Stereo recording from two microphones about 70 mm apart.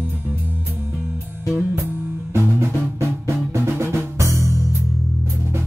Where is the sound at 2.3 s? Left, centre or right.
Right.